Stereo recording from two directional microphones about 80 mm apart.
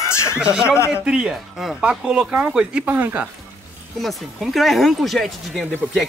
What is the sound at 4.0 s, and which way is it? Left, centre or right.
Speech, centre.